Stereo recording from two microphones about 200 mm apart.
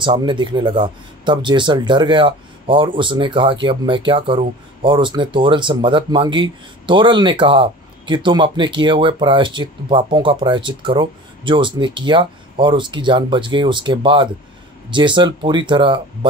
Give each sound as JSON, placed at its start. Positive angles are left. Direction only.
{"t": 0.0, "sound": "speech", "side_deg": -25}